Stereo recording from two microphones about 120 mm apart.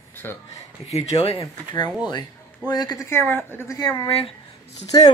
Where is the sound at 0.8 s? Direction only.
60° left (ahead or behind).